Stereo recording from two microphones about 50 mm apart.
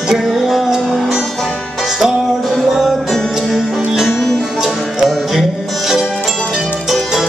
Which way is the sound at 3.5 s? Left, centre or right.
Centre.